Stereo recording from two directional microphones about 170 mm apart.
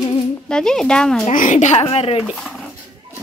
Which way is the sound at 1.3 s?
50° left (ahead or behind).